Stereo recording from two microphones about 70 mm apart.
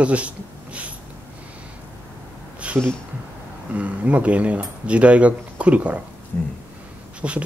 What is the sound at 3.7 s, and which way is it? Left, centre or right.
Speech, centre.